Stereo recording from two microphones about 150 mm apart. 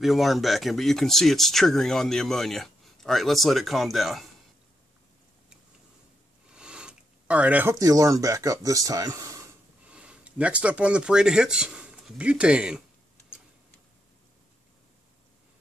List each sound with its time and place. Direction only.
0.0 s speech: centre (ahead or behind)
6.5 s a sound: 5° right (ahead or behind)
7.8 s speech: 25° right (ahead or behind)
9.8 s speech: 10° right (ahead or behind)